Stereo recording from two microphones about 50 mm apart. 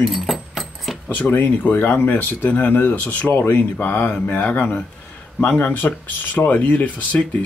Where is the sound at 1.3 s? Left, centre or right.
Left.